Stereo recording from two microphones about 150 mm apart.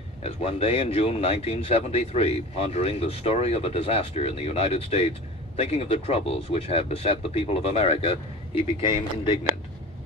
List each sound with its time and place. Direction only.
0.2 s speech: 40° left (ahead or behind)